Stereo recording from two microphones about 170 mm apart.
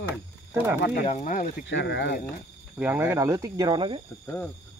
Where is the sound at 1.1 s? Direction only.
50° left (ahead or behind).